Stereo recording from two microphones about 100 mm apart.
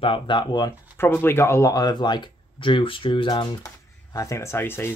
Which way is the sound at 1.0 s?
25° left (ahead or behind).